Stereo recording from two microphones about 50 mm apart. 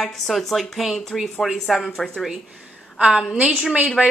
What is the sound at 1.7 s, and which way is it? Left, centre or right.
Speech, centre.